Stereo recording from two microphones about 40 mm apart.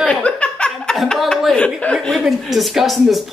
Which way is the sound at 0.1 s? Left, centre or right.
Left.